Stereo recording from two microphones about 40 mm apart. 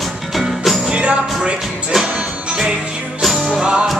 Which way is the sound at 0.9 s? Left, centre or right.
Right.